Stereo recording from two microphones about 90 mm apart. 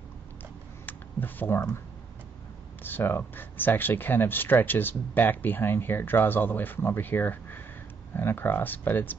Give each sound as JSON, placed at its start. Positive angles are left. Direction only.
{"t": 0.8, "sound": "speech", "side_deg": 20}
{"t": 2.8, "sound": "speech", "side_deg": 20}